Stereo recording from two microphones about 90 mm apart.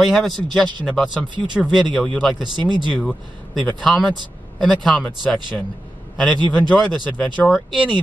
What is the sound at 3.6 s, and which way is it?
Speech, 10° left (ahead or behind).